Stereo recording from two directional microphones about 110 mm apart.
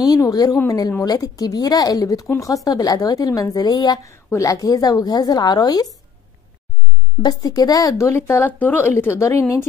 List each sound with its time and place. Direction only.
0.0 s speech: 35° left (ahead or behind)
7.2 s speech: 35° left (ahead or behind)
8.3 s a woman's voice: 20° left (ahead or behind)